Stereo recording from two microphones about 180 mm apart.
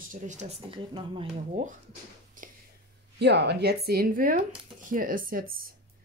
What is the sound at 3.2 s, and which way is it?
Speech, 70° right (ahead or behind).